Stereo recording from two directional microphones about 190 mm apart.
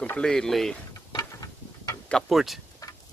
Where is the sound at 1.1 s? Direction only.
20° left (ahead or behind).